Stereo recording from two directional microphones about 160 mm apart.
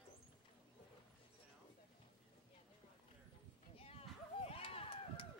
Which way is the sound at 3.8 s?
40° left (ahead or behind).